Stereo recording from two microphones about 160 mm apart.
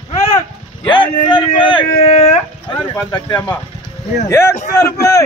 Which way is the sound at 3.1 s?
25° left (ahead or behind).